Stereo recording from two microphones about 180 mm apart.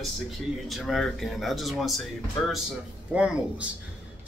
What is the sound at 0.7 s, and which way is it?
Speech, centre (ahead or behind).